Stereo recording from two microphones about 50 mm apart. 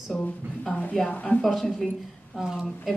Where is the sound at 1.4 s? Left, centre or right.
Centre.